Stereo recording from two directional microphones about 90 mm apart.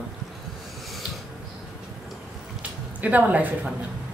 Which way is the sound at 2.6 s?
15° right (ahead or behind).